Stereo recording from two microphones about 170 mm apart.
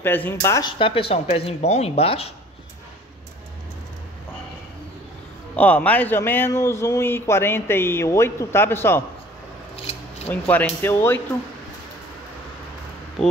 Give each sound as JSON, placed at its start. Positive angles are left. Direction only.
{"t": 0.0, "sound": "a man's voice", "side_deg": 10}
{"t": 0.7, "sound": "speech", "side_deg": 30}
{"t": 5.6, "sound": "a man's voice", "side_deg": 10}
{"t": 9.8, "sound": "scissors", "side_deg": 35}
{"t": 10.4, "sound": "a man's voice", "side_deg": 10}
{"t": 13.2, "sound": "speech", "side_deg": 0}